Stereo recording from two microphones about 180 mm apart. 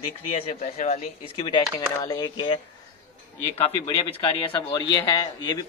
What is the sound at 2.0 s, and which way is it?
Speech, 20° left (ahead or behind).